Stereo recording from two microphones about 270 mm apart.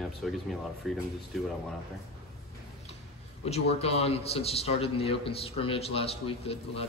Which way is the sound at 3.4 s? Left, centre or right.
Left.